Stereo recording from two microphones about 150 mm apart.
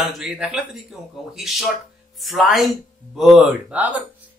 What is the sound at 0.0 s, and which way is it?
Speech, centre (ahead or behind).